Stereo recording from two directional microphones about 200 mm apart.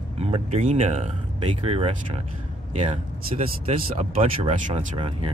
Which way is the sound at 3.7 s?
30° right (ahead or behind).